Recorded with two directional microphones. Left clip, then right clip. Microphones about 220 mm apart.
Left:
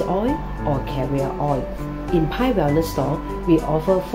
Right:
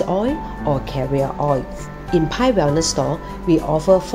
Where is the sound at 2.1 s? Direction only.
35° right (ahead or behind).